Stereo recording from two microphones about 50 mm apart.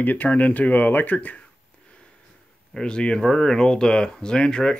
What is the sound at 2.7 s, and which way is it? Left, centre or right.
Speech, centre.